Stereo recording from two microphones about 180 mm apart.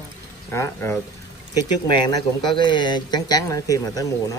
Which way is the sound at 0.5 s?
15° left (ahead or behind).